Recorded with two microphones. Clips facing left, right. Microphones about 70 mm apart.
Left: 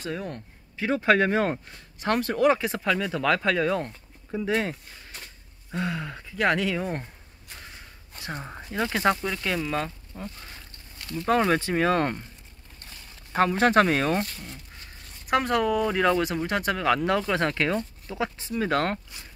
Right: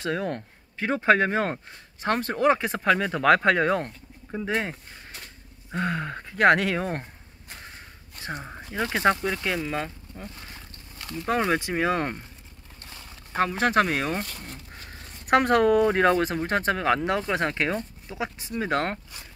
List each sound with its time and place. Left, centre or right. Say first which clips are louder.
0.0 s speech: right 5 dB; right
0.7 s speech: right 1 dB; right
1.1 s speech: left 1 dB; right
2.0 s speech: left 1 dB; right
4.3 s speech: left 2 dB; right
5.7 s speech: right 2 dB; right
8.5 s speech: left 1 dB; centre
9.2 s speech: right 1 dB; centre
13.3 s speech: left 3 dB; centre
15.2 s speech: right 4 dB; right
15.9 s speech: right 2 dB; right
16.7 s speech: even; right